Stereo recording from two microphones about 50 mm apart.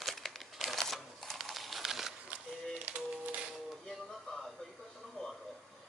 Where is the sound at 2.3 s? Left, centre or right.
Right.